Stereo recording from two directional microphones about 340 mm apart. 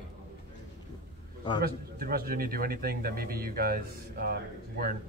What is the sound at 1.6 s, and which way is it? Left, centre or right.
A man's voice, right.